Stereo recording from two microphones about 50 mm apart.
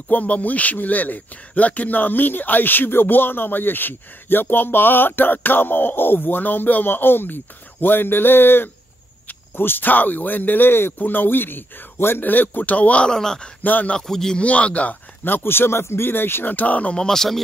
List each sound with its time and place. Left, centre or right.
0.1 s speech: left
13.0 s speech: centre
13.6 s speech: left
13.9 s speech: centre
14.4 s speech: left
15.2 s speech: left
16.5 s speech: left
16.9 s speech: centre